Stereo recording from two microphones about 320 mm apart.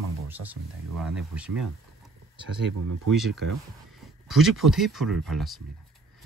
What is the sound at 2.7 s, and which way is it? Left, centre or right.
Speech, right.